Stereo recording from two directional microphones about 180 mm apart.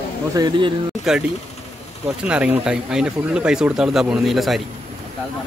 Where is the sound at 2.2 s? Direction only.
5° right (ahead or behind).